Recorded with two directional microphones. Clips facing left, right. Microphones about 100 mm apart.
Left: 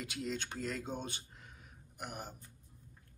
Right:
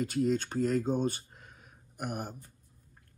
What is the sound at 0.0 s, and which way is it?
Speech, 45° right (ahead or behind).